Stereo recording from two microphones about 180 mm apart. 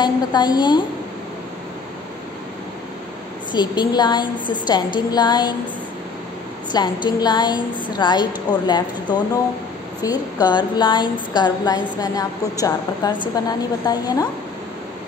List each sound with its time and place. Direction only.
0.0 s a woman's voice: 25° left (ahead or behind)
3.5 s a woman's voice: 25° left (ahead or behind)
6.7 s a woman's voice: 25° left (ahead or behind)